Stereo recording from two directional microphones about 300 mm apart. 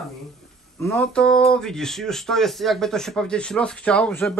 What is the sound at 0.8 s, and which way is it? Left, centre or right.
Speech, centre.